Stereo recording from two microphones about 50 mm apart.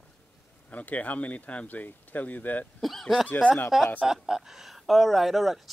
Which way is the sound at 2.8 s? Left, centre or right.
Centre.